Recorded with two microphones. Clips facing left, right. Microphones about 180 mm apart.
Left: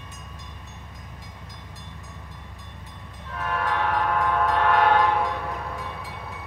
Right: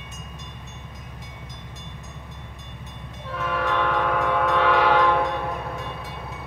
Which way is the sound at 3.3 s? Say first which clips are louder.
Right 2 dB; 90° right.